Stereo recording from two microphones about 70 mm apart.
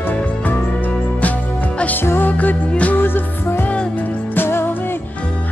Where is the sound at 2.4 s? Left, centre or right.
Left.